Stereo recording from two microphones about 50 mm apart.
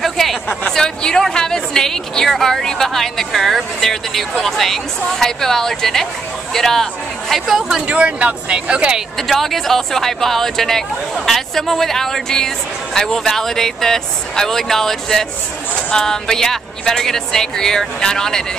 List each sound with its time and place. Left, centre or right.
0.0 s a sound: centre
0.7 s speech: centre
7.8 s speech: right
9.3 s speech: centre